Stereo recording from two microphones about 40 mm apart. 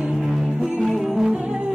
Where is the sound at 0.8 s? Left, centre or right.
Centre.